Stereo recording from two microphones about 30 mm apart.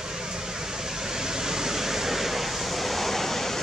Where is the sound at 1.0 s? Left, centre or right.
Centre.